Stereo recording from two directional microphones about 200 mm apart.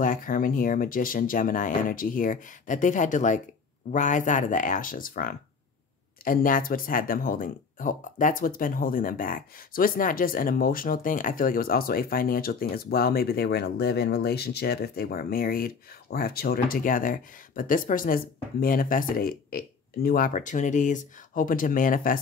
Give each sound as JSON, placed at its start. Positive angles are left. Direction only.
{"t": 0.0, "sound": "speech", "side_deg": 45}